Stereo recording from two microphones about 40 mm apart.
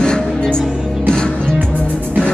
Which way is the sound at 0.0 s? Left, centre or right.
Centre.